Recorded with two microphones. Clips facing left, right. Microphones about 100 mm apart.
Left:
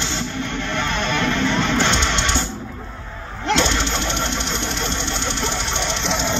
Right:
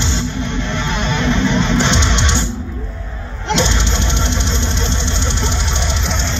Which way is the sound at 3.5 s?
20° right (ahead or behind).